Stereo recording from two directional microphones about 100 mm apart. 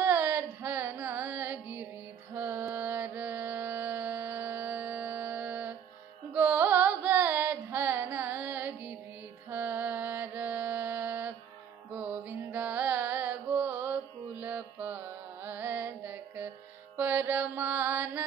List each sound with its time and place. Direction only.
0.0 s carnatic music: 20° right (ahead or behind)
2.3 s music: 20° right (ahead or behind)
6.3 s carnatic music: 20° right (ahead or behind)
9.5 s mantra: 20° right (ahead or behind)
11.9 s music: 20° right (ahead or behind)